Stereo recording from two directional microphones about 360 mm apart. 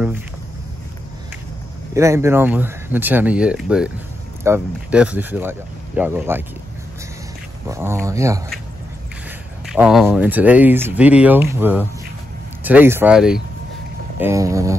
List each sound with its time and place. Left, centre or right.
2.0 s speech: centre
7.6 s speech: centre
9.7 s speech: centre